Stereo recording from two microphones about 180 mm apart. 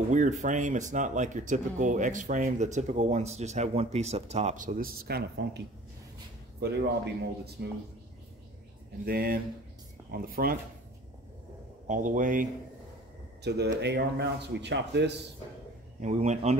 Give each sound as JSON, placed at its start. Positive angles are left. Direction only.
{"t": 0.1, "sound": "speech", "side_deg": -40}
{"t": 6.6, "sound": "speech", "side_deg": -65}
{"t": 9.0, "sound": "speech", "side_deg": -55}
{"t": 11.9, "sound": "speech", "side_deg": -45}
{"t": 13.4, "sound": "speech", "side_deg": -65}
{"t": 16.0, "sound": "a man's voice", "side_deg": -40}